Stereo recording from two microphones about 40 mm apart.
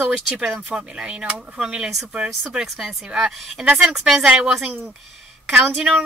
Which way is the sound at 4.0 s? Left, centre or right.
Centre.